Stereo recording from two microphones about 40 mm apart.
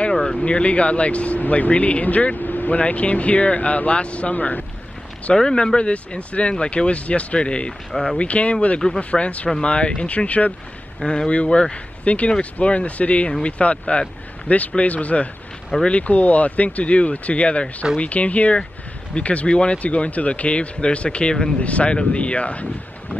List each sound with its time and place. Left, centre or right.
0.1 s speech: centre; by 4.6 s left
5.4 s speech: centre
7.9 s speech: centre
8.2 s speech: left
21.5 s speech: left